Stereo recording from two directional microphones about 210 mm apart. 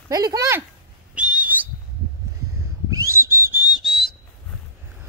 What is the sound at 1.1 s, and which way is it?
Whistle, 5° right (ahead or behind).